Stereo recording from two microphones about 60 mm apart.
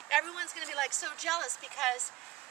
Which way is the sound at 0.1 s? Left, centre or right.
Centre.